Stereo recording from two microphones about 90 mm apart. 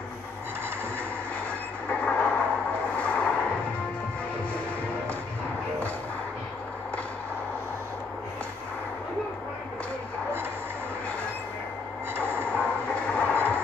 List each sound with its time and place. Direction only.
1.9 s train: 15° left (ahead or behind)
3.0 s vehicle: 15° left (ahead or behind)
12.5 s train: 15° left (ahead or behind)